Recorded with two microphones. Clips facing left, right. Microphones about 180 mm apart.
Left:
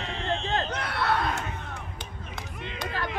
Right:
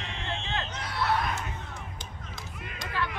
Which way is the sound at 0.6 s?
60° left (ahead or behind).